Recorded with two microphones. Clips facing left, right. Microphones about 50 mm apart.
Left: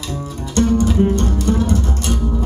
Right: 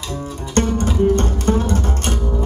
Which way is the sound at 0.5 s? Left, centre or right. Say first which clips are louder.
Left 3 dB; right.